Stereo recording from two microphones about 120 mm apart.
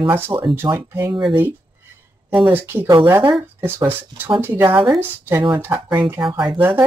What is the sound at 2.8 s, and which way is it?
Speech, 30° right (ahead or behind).